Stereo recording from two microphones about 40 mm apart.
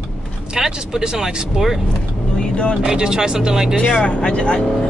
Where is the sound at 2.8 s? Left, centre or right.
Centre.